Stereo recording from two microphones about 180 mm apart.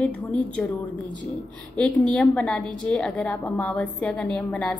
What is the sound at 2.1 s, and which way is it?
A woman's voice, 5° left (ahead or behind).